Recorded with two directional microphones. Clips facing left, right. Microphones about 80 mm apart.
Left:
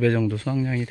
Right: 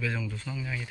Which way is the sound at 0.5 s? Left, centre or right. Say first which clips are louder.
Left 9 dB; left.